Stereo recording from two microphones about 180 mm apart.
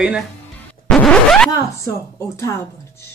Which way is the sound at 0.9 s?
5° left (ahead or behind).